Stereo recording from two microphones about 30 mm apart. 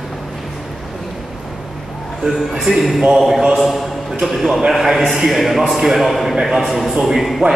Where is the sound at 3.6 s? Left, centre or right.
Centre.